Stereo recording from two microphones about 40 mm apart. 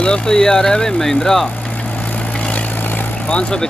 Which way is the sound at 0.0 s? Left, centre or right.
Centre.